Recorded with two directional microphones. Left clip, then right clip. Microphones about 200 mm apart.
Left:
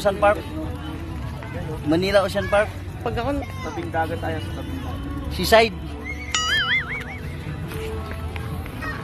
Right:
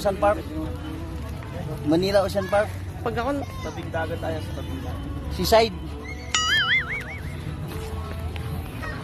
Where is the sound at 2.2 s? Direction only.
15° left (ahead or behind).